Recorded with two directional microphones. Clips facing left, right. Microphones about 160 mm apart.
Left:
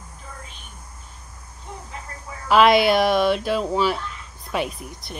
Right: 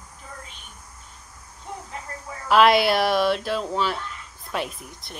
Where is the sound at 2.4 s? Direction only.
Centre (ahead or behind).